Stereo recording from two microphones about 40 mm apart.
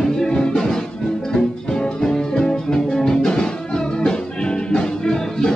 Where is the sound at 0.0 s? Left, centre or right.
Centre.